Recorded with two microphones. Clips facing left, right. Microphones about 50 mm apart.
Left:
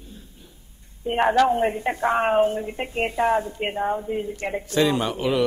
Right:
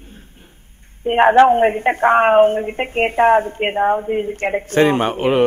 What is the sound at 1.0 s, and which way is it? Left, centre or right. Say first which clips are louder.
A woman's voice: right 8 dB; right.